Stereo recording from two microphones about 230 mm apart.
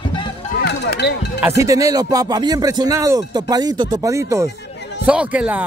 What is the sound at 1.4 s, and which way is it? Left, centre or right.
Speech, centre.